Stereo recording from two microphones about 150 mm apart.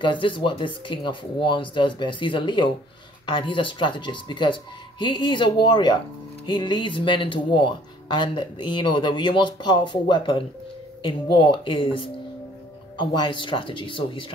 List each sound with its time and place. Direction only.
0.0 s speech: 35° left (ahead or behind)